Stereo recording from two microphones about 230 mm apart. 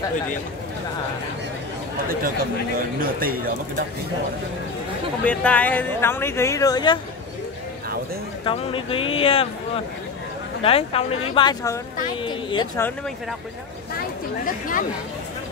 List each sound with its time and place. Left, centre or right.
3.0 s speech: right
5.2 s speech: centre
8.5 s speech: left
10.6 s speech: left; by 13.1 s centre
14.4 s speech: left